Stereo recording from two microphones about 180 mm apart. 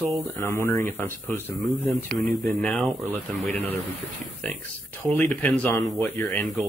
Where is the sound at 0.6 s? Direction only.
15° left (ahead or behind).